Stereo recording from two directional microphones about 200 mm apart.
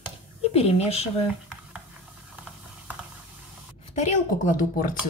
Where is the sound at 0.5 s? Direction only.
30° left (ahead or behind).